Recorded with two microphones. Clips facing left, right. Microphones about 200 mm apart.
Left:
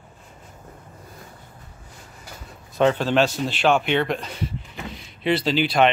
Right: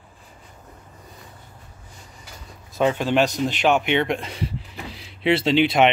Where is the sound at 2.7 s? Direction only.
10° right (ahead or behind).